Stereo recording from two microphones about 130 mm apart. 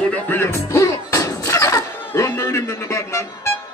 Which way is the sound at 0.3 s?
15° left (ahead or behind).